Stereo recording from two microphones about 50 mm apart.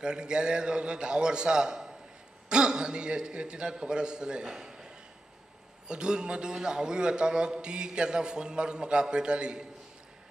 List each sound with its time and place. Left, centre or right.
0.0 s a man's voice: centre
5.9 s a man's voice: centre